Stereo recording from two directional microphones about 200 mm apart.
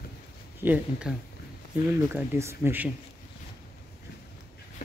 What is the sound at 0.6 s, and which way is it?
Speech, 5° right (ahead or behind).